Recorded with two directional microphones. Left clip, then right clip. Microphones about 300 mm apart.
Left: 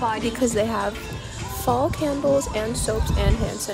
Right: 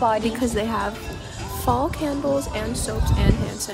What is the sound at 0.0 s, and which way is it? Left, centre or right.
Speech, right.